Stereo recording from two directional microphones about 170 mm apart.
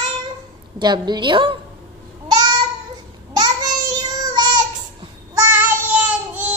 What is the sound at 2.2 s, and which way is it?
Babbling, 25° right (ahead or behind).